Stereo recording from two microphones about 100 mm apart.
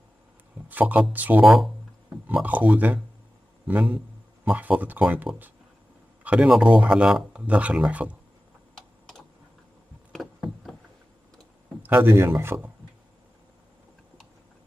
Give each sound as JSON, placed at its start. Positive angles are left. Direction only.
{"t": 0.7, "sound": "speech", "side_deg": -15}
{"t": 1.4, "sound": "speech", "side_deg": -5}
{"t": 2.4, "sound": "speech", "side_deg": -15}
{"t": 10.1, "sound": "a sound", "side_deg": 0}
{"t": 11.8, "sound": "speech", "side_deg": -20}